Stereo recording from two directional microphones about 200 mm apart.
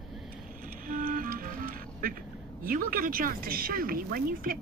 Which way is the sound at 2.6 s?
45° right (ahead or behind).